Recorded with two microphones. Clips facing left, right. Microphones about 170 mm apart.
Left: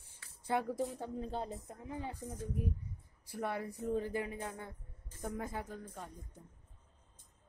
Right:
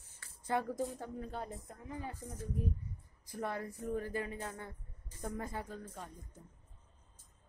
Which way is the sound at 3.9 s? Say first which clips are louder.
Left 2 dB; 20° left (ahead or behind).